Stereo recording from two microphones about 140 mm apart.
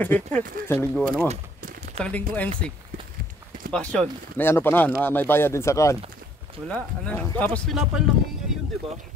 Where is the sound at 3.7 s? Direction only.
10° left (ahead or behind).